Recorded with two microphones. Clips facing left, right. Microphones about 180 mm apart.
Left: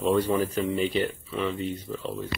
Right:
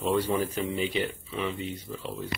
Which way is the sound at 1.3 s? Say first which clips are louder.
Left 3 dB; 15° right (ahead or behind).